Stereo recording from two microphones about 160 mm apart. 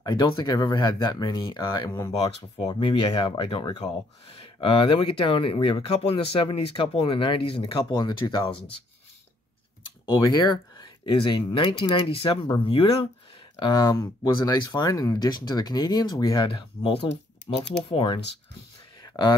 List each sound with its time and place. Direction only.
0.0 s speech: 25° left (ahead or behind)
1.9 s speech: 15° left (ahead or behind)
2.7 s speech: 30° left (ahead or behind)
10.0 s speech: 25° left (ahead or behind)
19.0 s a sound: 25° left (ahead or behind)